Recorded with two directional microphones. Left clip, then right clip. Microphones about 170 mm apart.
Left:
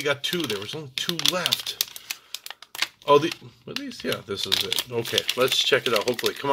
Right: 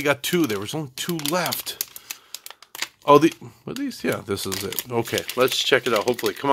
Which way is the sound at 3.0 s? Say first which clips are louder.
Right 4 dB; 80° right.